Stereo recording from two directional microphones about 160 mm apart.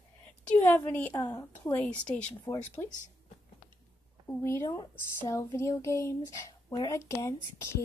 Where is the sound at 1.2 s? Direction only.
25° left (ahead or behind).